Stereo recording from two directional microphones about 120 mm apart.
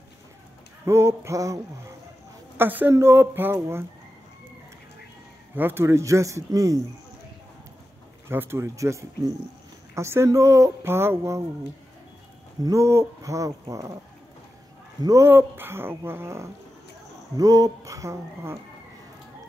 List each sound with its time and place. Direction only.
0.8 s speech: 20° right (ahead or behind)
2.5 s speech: 15° right (ahead or behind)
5.6 s speech: 20° right (ahead or behind)
8.3 s speech: 20° right (ahead or behind)
12.6 s speech: 25° right (ahead or behind)
15.0 s speech: 25° right (ahead or behind)
17.4 s speech: 30° right (ahead or behind)